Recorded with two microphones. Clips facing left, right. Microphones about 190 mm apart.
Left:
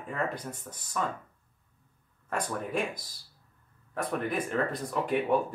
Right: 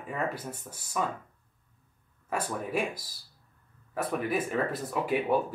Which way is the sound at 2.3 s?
5° right (ahead or behind).